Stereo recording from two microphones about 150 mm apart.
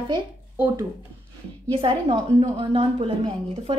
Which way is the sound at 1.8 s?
35° right (ahead or behind).